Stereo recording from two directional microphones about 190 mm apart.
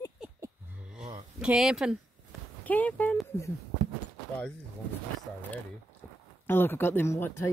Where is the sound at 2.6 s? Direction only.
10° left (ahead or behind).